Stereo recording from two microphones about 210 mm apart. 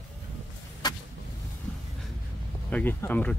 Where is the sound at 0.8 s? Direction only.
20° left (ahead or behind).